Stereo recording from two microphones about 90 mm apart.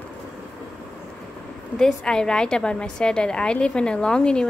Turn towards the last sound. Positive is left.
turn(degrees=10)  # may be behind; listen again after turning